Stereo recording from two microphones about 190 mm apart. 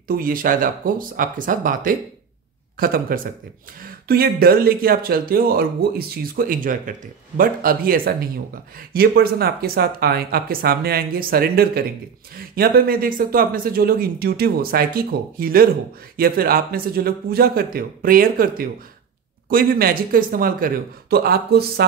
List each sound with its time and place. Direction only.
0.1 s speech: 50° right (ahead or behind)